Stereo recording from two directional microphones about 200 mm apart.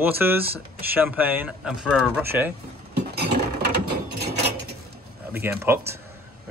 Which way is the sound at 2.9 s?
55° right (ahead or behind).